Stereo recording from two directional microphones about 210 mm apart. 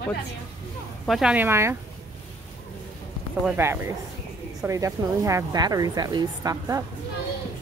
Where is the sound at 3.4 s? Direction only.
10° right (ahead or behind).